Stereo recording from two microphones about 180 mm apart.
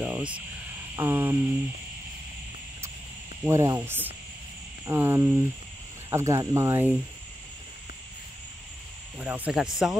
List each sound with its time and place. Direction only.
0.0 s cricket: 5° right (ahead or behind)
0.9 s speech: 15° right (ahead or behind)
3.4 s speech: 15° right (ahead or behind)
9.2 s speech: 5° right (ahead or behind)